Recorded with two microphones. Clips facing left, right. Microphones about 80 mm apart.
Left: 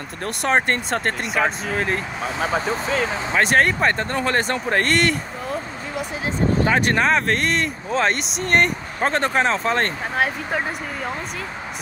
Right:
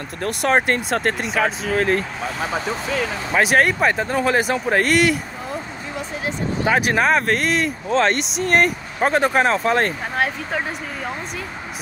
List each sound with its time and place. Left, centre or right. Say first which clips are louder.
0.2 s speech: right 2 dB; centre
2.6 s speech: left 1 dB; left
3.3 s speech: right 1 dB; centre
6.7 s speech: right 5 dB; centre